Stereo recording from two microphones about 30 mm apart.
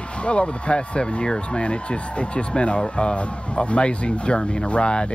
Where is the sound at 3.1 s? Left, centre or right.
Left.